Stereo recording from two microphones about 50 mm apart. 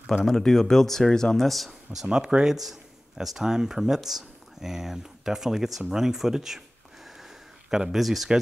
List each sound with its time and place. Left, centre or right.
0.0 s speech: centre
2.0 s speech: centre
7.1 s a sound: centre